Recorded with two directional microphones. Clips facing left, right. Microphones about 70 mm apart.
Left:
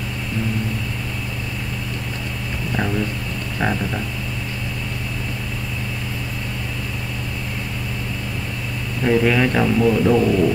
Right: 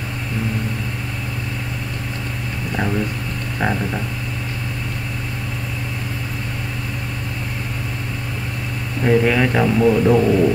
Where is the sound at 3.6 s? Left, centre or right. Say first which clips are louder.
Right 1 dB; centre.